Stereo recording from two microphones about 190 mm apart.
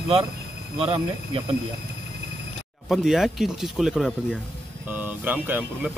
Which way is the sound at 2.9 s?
Centre (ahead or behind).